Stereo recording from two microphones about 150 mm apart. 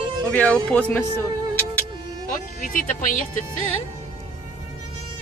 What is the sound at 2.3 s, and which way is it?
Speech, 60° left (ahead or behind).